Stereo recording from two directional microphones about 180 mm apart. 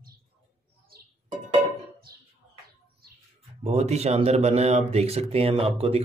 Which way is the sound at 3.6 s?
35° right (ahead or behind).